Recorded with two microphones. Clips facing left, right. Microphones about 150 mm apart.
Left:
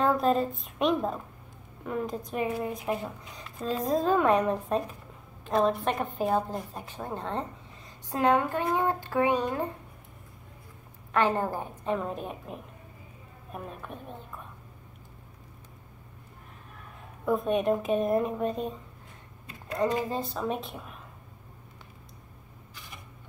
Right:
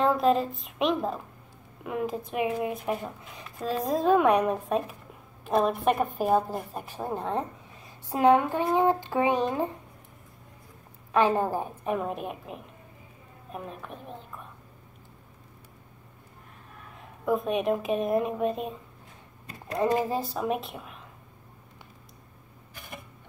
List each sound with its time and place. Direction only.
0.0 s speech: centre (ahead or behind); by 9.7 s 15° right (ahead or behind)
11.1 s speech: 15° right (ahead or behind)
17.2 s speech: centre (ahead or behind)
20.3 s speech: 5° right (ahead or behind)